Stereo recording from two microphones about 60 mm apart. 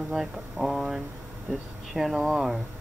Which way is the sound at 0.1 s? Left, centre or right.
Centre.